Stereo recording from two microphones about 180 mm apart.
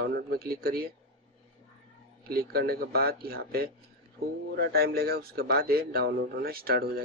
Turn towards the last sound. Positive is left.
turn(degrees=-55)  # may be behind; listen again after turning